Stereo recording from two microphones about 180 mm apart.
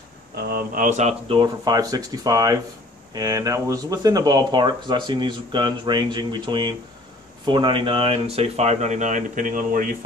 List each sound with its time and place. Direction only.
0.4 s speech: 55° right (ahead or behind); by 1.4 s 40° right (ahead or behind)
1.4 s speech: 20° right (ahead or behind); by 9.8 s 50° right (ahead or behind)